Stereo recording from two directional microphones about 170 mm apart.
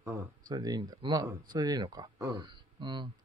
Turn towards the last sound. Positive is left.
turn(degrees=-25)  # may be behind; listen again after turning